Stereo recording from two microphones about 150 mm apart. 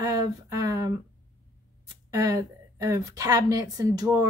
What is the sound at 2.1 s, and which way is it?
Speech, 20° right (ahead or behind).